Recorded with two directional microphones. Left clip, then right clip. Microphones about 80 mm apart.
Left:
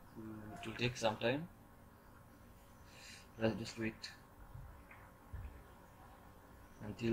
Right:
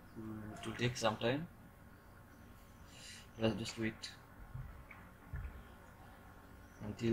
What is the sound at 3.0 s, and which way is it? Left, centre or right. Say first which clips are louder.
Speech: right 1 dB; centre.